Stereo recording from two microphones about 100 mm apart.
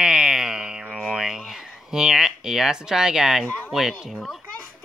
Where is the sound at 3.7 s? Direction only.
5° right (ahead or behind).